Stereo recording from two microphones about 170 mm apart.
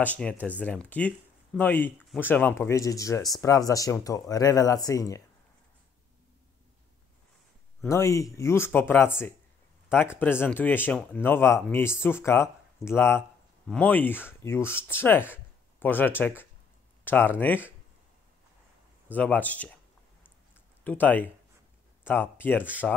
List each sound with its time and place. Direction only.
0.0 s speech: 10° left (ahead or behind)
7.8 s speech: 15° left (ahead or behind)
19.1 s speech: 10° left (ahead or behind)
20.8 s speech: 10° left (ahead or behind)